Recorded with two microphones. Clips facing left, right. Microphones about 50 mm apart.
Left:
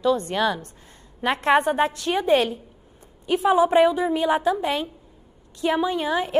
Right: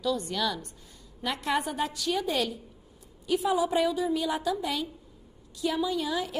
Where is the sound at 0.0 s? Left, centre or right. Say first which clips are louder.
Left 8 dB; left.